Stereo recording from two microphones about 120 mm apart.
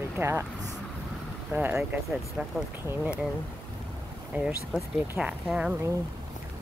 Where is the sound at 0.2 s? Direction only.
20° right (ahead or behind).